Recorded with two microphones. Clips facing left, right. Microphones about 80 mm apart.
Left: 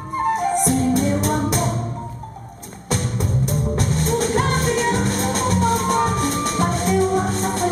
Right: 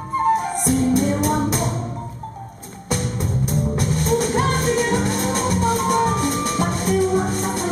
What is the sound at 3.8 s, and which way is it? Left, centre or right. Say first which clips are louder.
Music: right 1 dB; left.